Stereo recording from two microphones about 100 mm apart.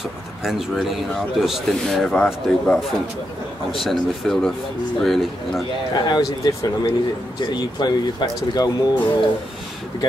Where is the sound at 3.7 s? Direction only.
Centre (ahead or behind).